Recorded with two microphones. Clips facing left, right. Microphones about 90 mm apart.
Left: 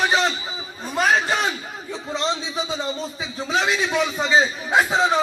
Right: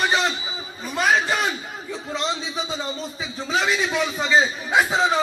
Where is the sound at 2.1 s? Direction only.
Centre (ahead or behind).